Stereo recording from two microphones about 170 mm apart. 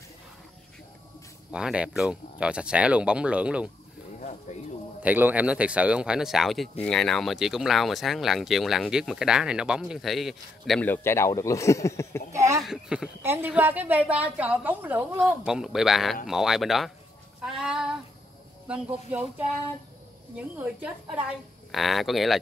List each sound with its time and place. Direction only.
1.5 s a woman's voice: 5° right (ahead or behind)
4.2 s a sound: 45° left (ahead or behind)
5.0 s a woman's voice: 10° right (ahead or behind)
10.9 s speech: 15° left (ahead or behind)
12.3 s a woman's voice: 15° right (ahead or behind)
12.6 s a woman's voice: 5° right (ahead or behind)
17.4 s child singing: 5° right (ahead or behind)
18.7 s a woman's voice: 10° right (ahead or behind)